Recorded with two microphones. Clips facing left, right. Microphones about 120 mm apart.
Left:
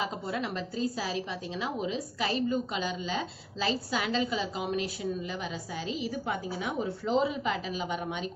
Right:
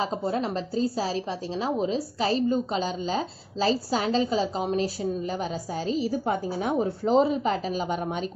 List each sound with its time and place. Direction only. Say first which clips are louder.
0.0 s a woman's voice: right 6 dB; 35° right (ahead or behind)